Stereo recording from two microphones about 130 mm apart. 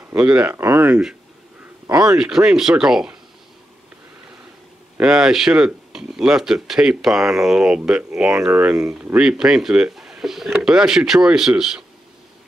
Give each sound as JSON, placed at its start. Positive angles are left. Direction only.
{"t": 0.1, "sound": "speech", "side_deg": -10}
{"t": 1.9, "sound": "speech", "side_deg": -30}
{"t": 2.1, "sound": "speech", "side_deg": -5}
{"t": 4.9, "sound": "speech", "side_deg": -5}